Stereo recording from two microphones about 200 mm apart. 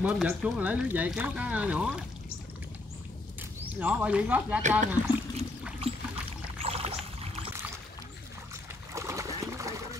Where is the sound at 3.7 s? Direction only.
10° right (ahead or behind).